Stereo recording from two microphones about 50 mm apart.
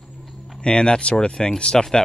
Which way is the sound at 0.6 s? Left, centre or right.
Centre.